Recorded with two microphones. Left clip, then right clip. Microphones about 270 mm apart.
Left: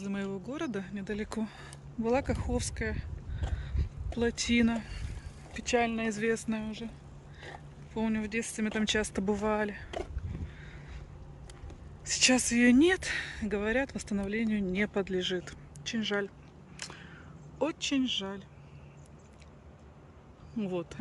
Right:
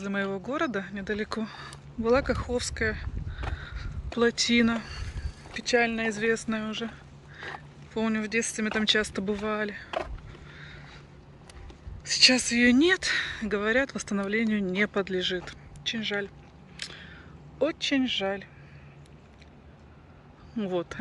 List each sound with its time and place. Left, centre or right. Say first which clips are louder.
0.0 s speech: right 7 dB; centre
12.2 s speech: right 5 dB; centre
16.7 s a sound: right 5 dB; centre
17.6 s speech: right 5 dB; centre
20.5 s speech: right 5 dB; centre